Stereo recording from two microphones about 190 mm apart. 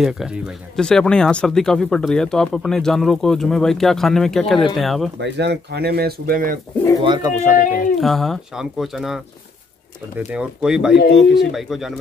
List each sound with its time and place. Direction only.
0.0 s speech: 5° right (ahead or behind)
5.2 s speech: 60° right (ahead or behind)
7.0 s speech: 25° right (ahead or behind)
7.5 s speech: 45° left (ahead or behind)
8.0 s speech: centre (ahead or behind)
10.3 s speech: 5° right (ahead or behind)